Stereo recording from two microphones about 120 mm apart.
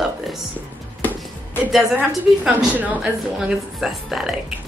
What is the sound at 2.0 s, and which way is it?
A woman's voice, 10° right (ahead or behind).